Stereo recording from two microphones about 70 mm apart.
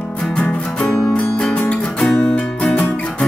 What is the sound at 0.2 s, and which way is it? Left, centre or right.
Music, centre.